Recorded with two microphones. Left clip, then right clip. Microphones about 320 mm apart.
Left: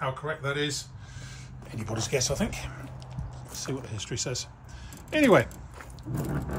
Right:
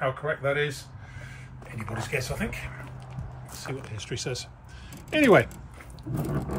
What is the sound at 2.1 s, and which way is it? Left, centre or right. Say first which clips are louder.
Speech: left 3 dB; centre.